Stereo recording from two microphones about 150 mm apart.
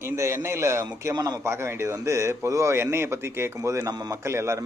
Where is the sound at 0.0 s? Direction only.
20° right (ahead or behind).